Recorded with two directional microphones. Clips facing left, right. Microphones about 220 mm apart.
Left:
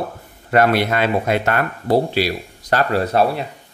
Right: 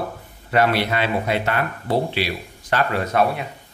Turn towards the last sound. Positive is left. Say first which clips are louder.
# left 3 dB
turn(degrees=35)  # may be behind; listen again after turning